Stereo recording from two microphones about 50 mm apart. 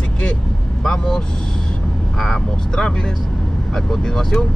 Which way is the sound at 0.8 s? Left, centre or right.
Centre.